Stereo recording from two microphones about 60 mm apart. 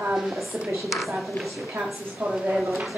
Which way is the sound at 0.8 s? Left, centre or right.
Centre.